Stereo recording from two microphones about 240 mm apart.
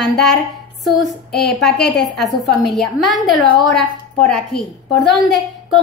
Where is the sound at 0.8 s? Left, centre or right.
Centre.